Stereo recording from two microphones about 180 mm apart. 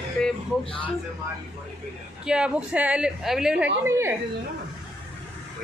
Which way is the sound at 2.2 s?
5° right (ahead or behind).